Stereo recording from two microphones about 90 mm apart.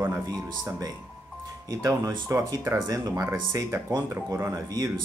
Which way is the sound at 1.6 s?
40° right (ahead or behind).